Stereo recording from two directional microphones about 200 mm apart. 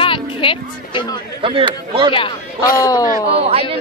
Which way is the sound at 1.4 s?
25° right (ahead or behind).